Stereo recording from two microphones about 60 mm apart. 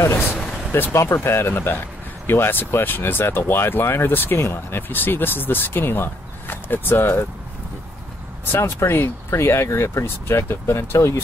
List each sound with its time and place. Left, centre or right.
0.7 s speech: left
1.0 s speech: left
8.5 s speech: left